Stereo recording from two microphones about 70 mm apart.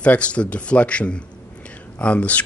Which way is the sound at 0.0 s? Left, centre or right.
Centre.